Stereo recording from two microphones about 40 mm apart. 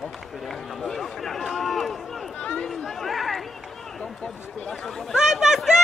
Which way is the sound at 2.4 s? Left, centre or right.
Left.